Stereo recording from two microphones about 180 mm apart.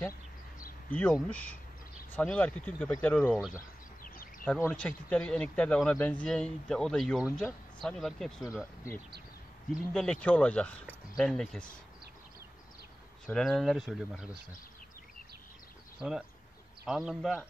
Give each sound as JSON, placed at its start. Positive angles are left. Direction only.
{"t": 0.8, "sound": "speech", "side_deg": 5}
{"t": 3.3, "sound": "speech", "side_deg": -5}
{"t": 4.0, "sound": "a sound", "side_deg": 50}
{"t": 4.5, "sound": "speech", "side_deg": 10}
{"t": 9.7, "sound": "speech", "side_deg": 5}
{"t": 13.3, "sound": "speech", "side_deg": 0}
{"t": 16.0, "sound": "speech", "side_deg": -5}